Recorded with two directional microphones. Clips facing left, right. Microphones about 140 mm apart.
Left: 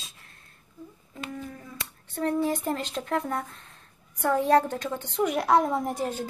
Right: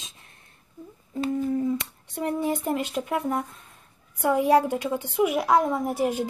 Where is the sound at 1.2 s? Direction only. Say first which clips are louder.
Right 13 dB; 25° right (ahead or behind).